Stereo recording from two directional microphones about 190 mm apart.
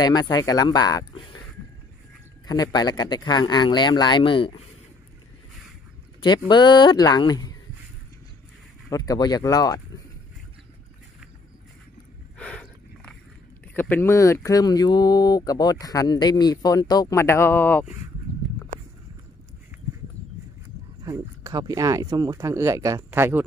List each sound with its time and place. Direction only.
0.0 s speech: 20° left (ahead or behind)
2.4 s speech: 20° left (ahead or behind)
6.2 s speech: 25° left (ahead or behind)
8.8 s speech: 20° left (ahead or behind)
12.4 s a sound: 5° left (ahead or behind)
13.7 s speech: 10° left (ahead or behind)
21.0 s speech: 20° right (ahead or behind)